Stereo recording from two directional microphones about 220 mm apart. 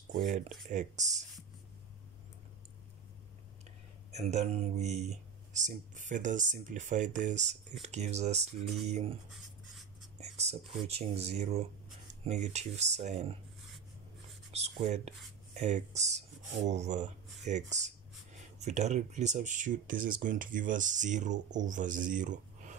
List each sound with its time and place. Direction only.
0.1 s speech: 35° right (ahead or behind)
4.1 s speech: 30° right (ahead or behind)
14.5 s speech: 30° right (ahead or behind)